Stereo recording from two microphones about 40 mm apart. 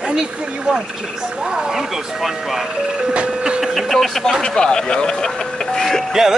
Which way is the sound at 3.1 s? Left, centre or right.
Right.